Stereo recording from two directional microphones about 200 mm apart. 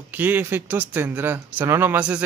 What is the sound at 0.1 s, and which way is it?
Speech, 10° right (ahead or behind).